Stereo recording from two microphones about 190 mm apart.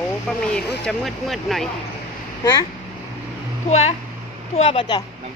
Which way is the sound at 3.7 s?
35° left (ahead or behind).